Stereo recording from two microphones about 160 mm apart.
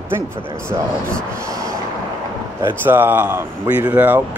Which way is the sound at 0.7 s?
25° right (ahead or behind).